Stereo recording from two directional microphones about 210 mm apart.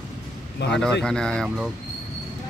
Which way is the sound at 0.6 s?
55° left (ahead or behind).